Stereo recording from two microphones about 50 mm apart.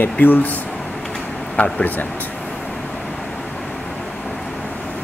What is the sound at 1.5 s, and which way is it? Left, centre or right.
Speech, left.